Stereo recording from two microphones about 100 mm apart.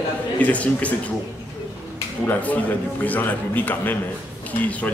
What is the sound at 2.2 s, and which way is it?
A man's voice, 15° left (ahead or behind).